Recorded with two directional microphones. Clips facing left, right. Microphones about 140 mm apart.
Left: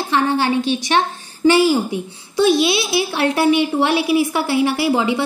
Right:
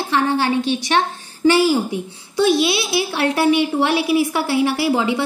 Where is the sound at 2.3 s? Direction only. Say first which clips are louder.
Left 1 dB; 25° left (ahead or behind).